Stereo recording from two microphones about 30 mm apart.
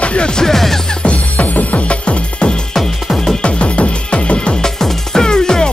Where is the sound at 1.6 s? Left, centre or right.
Left.